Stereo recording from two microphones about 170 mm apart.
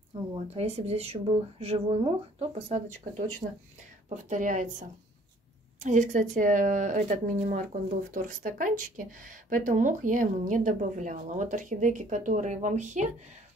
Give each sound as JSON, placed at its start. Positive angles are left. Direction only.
{"t": 0.6, "sound": "speech", "side_deg": -35}